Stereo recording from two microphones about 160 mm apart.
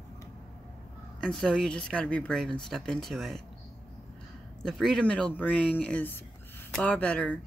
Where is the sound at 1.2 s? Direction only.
5° left (ahead or behind).